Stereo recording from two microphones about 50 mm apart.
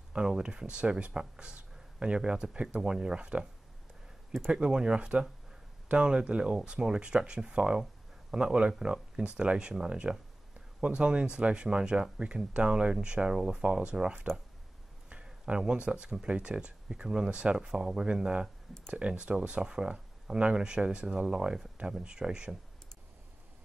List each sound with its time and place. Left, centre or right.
0.1 s speech: centre
4.5 s speech: right
7.8 s a sound: centre
8.7 s speech: centre